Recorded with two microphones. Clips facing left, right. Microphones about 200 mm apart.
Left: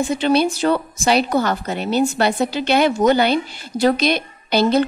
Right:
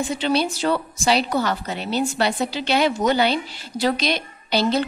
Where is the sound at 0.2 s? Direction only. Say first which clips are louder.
Left 5 dB; 50° left (ahead or behind).